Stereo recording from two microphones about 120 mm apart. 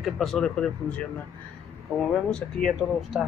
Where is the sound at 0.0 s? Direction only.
Centre (ahead or behind).